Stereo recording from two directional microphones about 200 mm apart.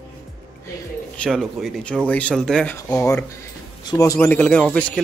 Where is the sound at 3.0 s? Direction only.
15° left (ahead or behind).